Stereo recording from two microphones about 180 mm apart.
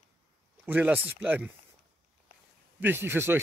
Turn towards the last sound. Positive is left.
turn(degrees=-15)  # may be behind; listen again after turning